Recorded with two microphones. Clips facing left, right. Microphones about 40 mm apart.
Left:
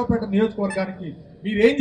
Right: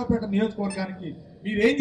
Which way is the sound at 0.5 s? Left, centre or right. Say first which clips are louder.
Left 5 dB; left.